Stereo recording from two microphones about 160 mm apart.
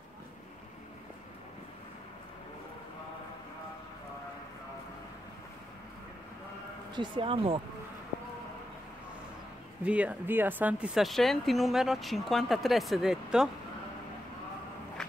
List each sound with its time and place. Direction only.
7.0 s speech: 35° right (ahead or behind)
9.8 s speech: 10° right (ahead or behind)
15.0 s walk: 5° left (ahead or behind)